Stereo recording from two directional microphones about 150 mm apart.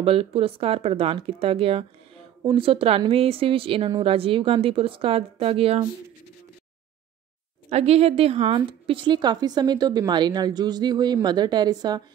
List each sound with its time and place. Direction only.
0.0 s speech: 40° right (ahead or behind)
7.7 s a woman's voice: 45° right (ahead or behind); by 12.0 s 25° right (ahead or behind)